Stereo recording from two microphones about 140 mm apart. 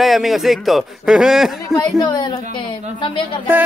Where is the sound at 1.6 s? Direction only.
25° left (ahead or behind).